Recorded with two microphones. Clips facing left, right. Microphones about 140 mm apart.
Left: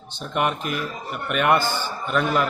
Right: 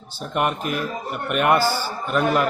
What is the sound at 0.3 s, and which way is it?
Speech, centre (ahead or behind).